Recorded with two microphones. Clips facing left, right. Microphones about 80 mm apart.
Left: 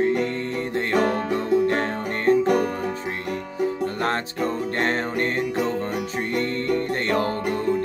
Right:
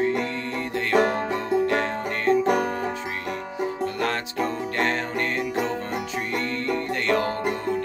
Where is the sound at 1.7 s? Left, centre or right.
Left.